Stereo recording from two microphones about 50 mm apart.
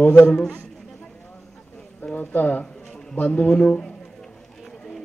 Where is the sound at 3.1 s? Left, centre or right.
Left.